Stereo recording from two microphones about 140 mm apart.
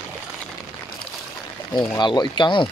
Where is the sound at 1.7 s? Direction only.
30° left (ahead or behind).